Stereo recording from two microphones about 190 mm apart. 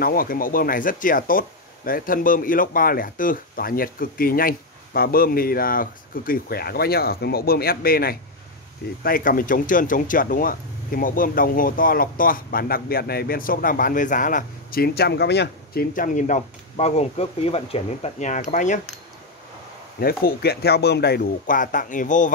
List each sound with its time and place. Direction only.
0.0 s speech: 50° left (ahead or behind)
20.0 s speech: 50° left (ahead or behind)